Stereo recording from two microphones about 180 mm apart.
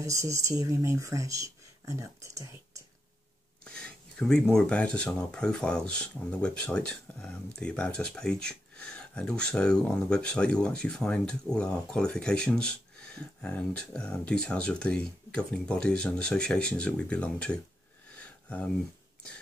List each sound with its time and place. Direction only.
0.0 s speech: 15° right (ahead or behind)
3.6 s speech: 5° left (ahead or behind)
18.1 s a sound: 5° left (ahead or behind)